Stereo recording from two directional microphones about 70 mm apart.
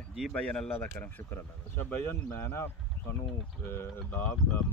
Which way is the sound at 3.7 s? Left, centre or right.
Left.